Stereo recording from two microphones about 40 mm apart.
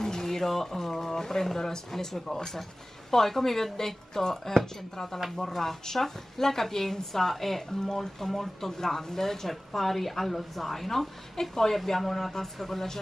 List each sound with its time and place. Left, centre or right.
0.0 s a woman's voice: centre